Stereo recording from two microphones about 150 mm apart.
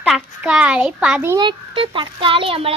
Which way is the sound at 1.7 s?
35° right (ahead or behind).